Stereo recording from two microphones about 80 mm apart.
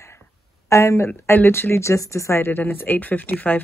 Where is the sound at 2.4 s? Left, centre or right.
Left.